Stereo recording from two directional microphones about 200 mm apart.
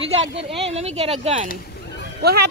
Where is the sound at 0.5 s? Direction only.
30° right (ahead or behind).